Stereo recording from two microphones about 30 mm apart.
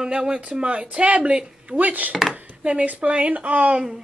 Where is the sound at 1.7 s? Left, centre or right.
Right.